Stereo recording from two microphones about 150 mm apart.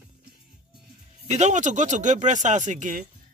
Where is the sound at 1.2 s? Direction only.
50° right (ahead or behind).